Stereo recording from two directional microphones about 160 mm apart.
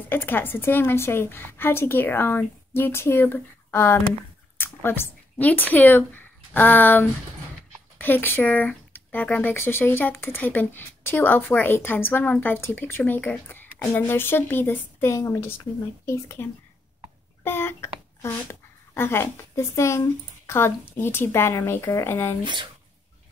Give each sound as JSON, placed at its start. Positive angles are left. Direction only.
{"t": 0.1, "sound": "a woman's voice", "side_deg": 15}
{"t": 22.4, "sound": "speech", "side_deg": -30}